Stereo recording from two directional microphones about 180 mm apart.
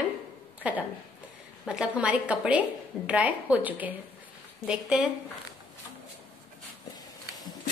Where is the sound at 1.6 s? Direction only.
5° right (ahead or behind).